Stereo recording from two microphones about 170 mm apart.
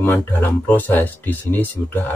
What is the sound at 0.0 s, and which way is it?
Speech, 15° left (ahead or behind).